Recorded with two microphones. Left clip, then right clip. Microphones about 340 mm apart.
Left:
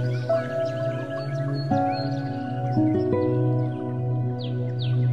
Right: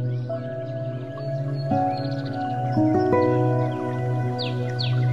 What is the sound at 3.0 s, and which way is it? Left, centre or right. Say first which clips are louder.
Music: right 4 dB; centre.